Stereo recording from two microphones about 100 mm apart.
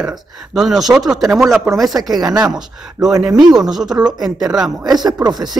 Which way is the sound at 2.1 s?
40° right (ahead or behind).